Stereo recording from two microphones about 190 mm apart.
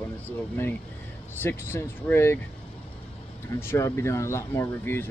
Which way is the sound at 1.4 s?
10° left (ahead or behind).